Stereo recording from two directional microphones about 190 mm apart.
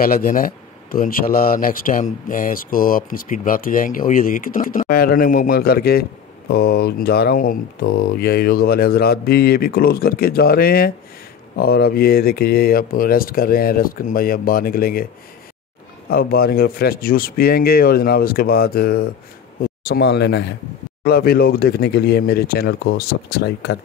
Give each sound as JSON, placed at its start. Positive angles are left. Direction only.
{"t": 0.0, "sound": "speech", "side_deg": 50}
{"t": 16.1, "sound": "speech", "side_deg": 55}
{"t": 21.0, "sound": "speech", "side_deg": 55}